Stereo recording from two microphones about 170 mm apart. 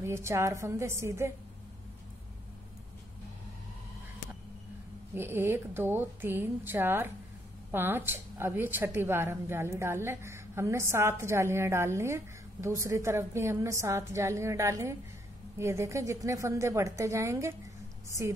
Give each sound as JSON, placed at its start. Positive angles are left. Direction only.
{"t": 0.0, "sound": "a woman's voice", "side_deg": -15}
{"t": 5.1, "sound": "a woman's voice", "side_deg": -15}